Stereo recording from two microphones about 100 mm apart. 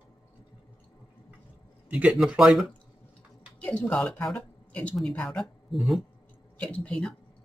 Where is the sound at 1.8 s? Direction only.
15° right (ahead or behind).